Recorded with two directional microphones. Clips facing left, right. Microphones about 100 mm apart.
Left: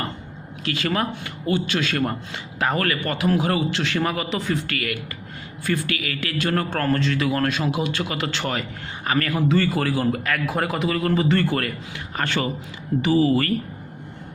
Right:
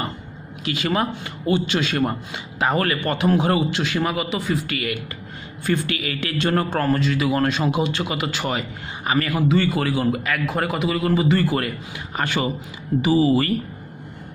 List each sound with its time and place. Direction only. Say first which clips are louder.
0.7 s a man's voice: right 2 dB; 20° right (ahead or behind)
4.6 s a man's voice: right 1 dB; 20° right (ahead or behind)